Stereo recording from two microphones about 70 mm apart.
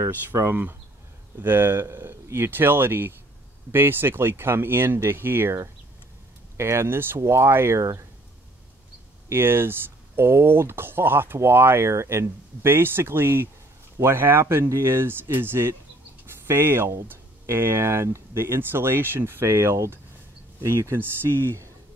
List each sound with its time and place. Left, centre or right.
0.3 s speech: right
1.4 s speech: right
9.3 s speech: right